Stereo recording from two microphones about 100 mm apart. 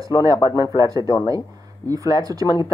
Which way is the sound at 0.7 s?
35° right (ahead or behind).